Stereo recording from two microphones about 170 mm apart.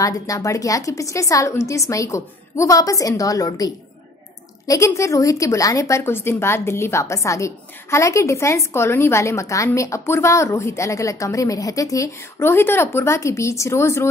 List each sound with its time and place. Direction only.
0.0 s a woman's voice: 20° left (ahead or behind)